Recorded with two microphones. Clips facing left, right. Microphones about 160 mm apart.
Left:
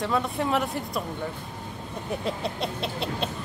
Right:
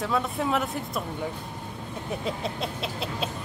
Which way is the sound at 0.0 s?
Centre (ahead or behind).